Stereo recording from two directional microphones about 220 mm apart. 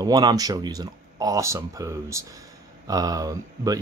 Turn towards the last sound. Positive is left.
turn(degrees=-15)  # may be behind; listen again after turning